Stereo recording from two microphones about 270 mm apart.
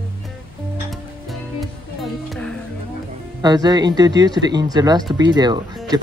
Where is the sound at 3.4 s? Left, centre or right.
Centre.